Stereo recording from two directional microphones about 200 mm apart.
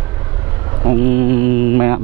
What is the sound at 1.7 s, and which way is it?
Mantra, 15° right (ahead or behind).